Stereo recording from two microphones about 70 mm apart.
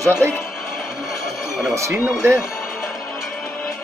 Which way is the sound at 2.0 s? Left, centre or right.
Right.